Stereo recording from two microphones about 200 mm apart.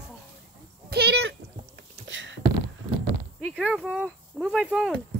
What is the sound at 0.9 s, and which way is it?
Speech, 55° right (ahead or behind).